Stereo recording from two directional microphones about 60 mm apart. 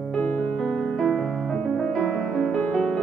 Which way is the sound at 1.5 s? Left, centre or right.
Centre.